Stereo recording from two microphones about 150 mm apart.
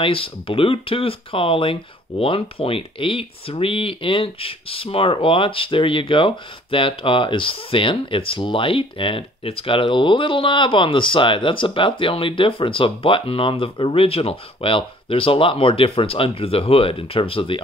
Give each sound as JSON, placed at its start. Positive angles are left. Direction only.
{"t": 0.0, "sound": "speech", "side_deg": 35}